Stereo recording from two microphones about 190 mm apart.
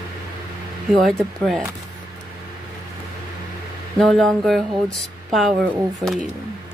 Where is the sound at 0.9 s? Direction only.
Centre (ahead or behind).